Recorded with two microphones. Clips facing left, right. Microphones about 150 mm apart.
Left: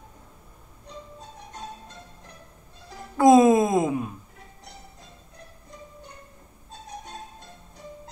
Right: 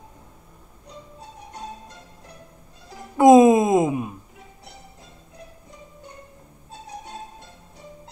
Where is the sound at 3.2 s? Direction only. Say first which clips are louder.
Right 3 dB; 20° right (ahead or behind).